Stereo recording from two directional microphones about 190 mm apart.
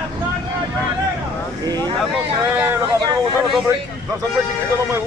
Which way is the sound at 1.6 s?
20° right (ahead or behind).